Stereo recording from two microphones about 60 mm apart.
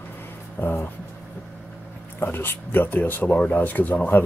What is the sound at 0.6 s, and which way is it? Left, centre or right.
Speech, left.